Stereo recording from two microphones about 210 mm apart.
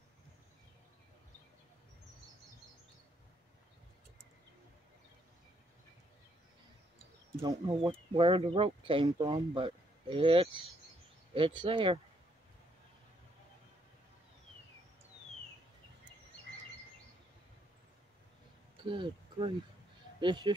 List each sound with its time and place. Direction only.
7.3 s speech: 15° right (ahead or behind)
8.2 s speech: 25° right (ahead or behind)
18.9 s speech: 25° right (ahead or behind)